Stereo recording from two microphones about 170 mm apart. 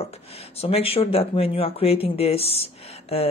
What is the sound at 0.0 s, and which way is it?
A man's voice, 35° left (ahead or behind).